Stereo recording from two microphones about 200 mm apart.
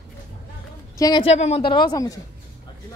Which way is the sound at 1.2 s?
30° left (ahead or behind).